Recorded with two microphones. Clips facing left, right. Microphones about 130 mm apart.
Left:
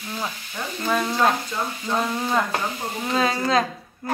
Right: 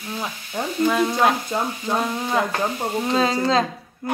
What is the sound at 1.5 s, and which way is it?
Frying, 40° right (ahead or behind).